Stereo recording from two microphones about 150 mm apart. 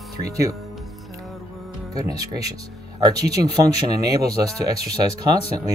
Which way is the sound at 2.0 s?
25° right (ahead or behind).